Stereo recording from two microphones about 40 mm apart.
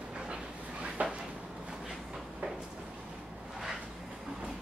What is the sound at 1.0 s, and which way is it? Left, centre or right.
Drawer open or close, right.